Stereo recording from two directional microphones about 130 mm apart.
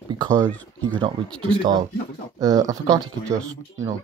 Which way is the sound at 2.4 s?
25° right (ahead or behind).